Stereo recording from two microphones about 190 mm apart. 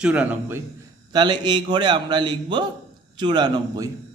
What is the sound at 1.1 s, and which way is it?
A man's voice, 25° right (ahead or behind).